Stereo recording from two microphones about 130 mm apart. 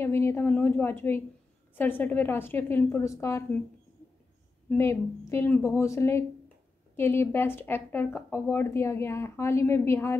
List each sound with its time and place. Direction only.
0.0 s speech: 20° left (ahead or behind)
4.6 s a woman's voice: 20° left (ahead or behind)